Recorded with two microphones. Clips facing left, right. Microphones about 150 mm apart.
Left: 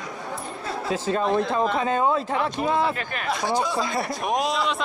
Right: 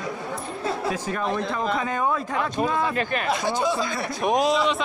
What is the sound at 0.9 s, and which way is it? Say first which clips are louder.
Speech: left 3 dB; 25° left (ahead or behind).